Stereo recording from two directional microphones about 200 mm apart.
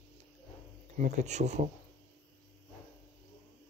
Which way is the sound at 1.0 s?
35° right (ahead or behind).